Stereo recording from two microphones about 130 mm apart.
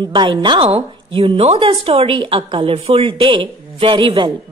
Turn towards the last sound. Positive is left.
turn(degrees=-40)  # may be behind; listen again after turning